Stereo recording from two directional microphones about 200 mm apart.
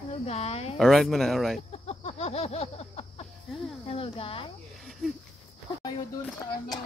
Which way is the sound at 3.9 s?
25° left (ahead or behind).